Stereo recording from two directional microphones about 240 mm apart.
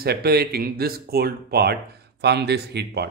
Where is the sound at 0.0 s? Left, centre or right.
Right.